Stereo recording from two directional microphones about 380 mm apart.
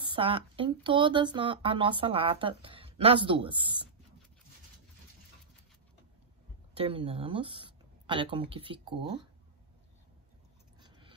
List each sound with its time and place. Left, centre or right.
0.0 s speech: centre
6.7 s speech: centre
10.8 s a sound: centre